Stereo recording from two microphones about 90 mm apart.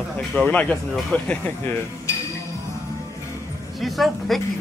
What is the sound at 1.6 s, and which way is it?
Speech, 25° left (ahead or behind).